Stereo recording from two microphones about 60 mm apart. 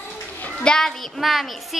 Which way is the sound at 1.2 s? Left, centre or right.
Centre.